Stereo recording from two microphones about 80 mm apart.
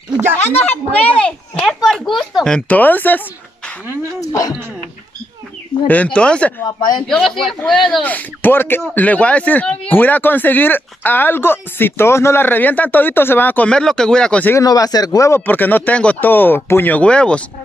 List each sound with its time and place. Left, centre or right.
0.4 s speech: left
1.5 s a sound: centre
1.9 s speech: centre
2.7 s speech: left
4.2 s speech: left
6.1 s speech: centre
8.0 s speech: left
13.7 s speech: centre
14.6 s speech: left
15.4 s speech: left